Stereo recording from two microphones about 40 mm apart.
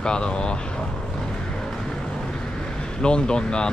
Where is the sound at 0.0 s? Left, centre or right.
Left.